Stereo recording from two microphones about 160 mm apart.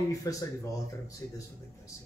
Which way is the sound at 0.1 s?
20° left (ahead or behind).